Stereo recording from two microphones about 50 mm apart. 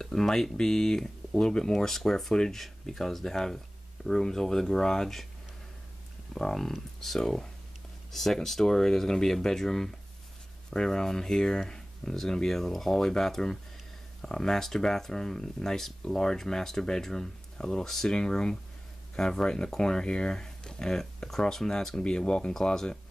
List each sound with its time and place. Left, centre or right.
0.0 s speech: centre
6.3 s speech: centre